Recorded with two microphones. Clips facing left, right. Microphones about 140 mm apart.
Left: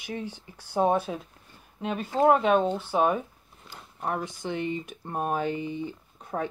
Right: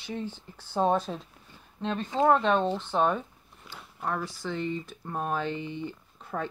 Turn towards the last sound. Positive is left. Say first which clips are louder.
# left 2 dB
turn(degrees=10)  # may be behind; listen again after turning